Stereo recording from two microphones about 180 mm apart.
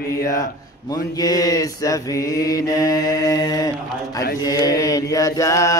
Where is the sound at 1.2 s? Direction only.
20° left (ahead or behind).